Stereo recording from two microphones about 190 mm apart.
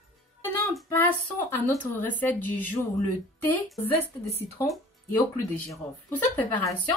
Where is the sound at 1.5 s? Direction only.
10° left (ahead or behind).